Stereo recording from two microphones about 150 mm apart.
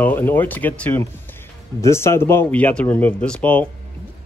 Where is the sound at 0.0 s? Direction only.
10° left (ahead or behind).